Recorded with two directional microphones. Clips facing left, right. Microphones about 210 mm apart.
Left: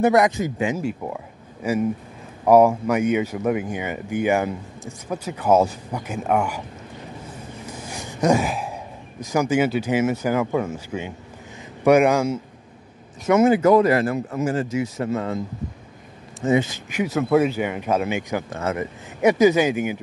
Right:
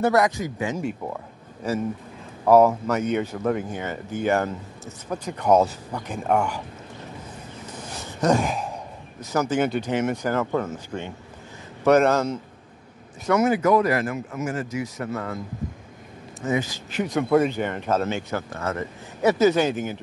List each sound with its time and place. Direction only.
0.0 s speech: 20° left (ahead or behind)
0.7 s speech: 5° left (ahead or behind)
7.7 s gasp: 10° left (ahead or behind)
9.2 s speech: 10° left (ahead or behind)
13.3 s speech: 25° left (ahead or behind)
16.9 s speech: 5° left (ahead or behind)